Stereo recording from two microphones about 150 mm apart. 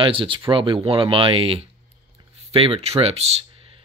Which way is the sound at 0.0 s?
35° right (ahead or behind).